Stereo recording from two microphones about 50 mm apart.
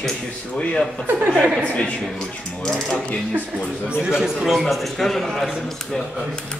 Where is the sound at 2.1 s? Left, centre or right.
Centre.